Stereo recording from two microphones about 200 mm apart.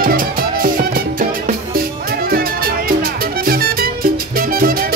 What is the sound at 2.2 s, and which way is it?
Music, 50° right (ahead or behind).